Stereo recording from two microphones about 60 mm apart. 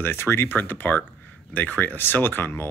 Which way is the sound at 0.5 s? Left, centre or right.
Left.